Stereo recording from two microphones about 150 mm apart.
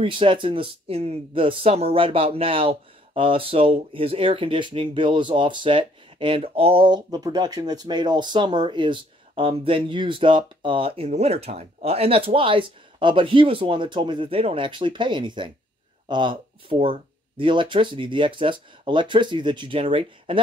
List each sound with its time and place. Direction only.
0.0 s speech: 35° right (ahead or behind)